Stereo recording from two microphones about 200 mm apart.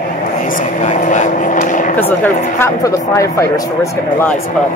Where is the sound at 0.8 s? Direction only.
40° left (ahead or behind).